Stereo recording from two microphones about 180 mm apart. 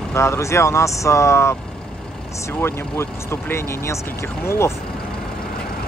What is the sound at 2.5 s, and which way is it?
Speech, 15° left (ahead or behind).